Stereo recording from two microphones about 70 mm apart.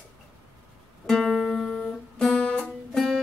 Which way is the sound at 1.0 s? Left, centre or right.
Centre.